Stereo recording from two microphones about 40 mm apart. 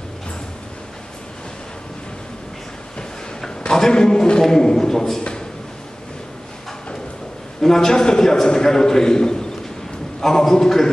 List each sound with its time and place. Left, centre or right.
3.8 s a man's voice: centre
7.6 s a man's voice: centre